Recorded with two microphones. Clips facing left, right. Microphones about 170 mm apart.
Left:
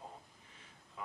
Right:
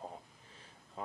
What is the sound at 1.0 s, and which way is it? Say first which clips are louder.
Speech: right 4 dB; 35° right (ahead or behind).